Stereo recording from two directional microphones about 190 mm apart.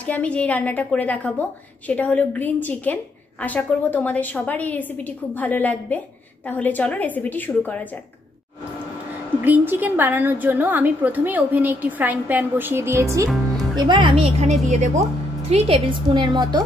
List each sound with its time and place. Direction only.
0.0 s a woman's voice: 5° left (ahead or behind)
9.4 s a woman's voice: 10° right (ahead or behind)